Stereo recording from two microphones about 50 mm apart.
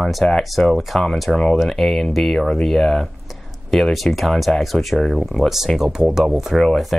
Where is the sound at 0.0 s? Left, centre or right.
Centre.